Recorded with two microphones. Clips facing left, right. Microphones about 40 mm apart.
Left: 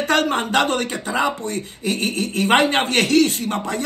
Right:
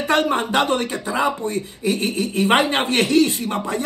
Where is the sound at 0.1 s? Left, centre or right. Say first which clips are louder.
Right 1 dB; left.